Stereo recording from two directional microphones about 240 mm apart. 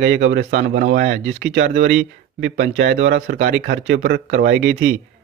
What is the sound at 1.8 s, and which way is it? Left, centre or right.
Speech, right.